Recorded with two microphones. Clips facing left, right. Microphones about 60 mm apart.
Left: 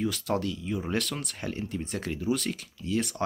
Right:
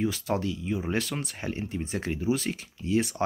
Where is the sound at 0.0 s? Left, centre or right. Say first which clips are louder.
Right 1 dB; centre.